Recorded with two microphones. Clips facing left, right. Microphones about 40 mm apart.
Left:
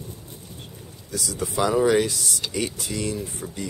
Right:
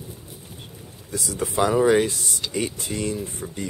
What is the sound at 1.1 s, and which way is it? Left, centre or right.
Speech, right.